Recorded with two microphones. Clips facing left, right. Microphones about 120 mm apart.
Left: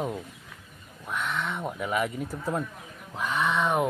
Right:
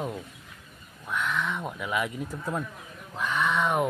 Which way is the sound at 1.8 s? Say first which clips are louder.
Left 2 dB; 40° left (ahead or behind).